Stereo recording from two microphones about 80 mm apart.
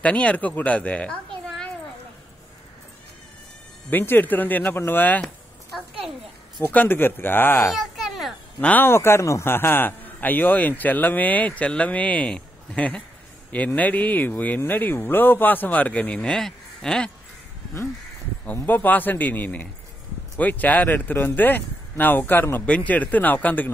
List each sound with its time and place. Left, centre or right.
0.0 s speech: centre
3.9 s a man's voice: left
6.6 s a man's voice: left
7.7 s a sound: centre
8.5 s a man's voice: left
18.4 s a man's voice: left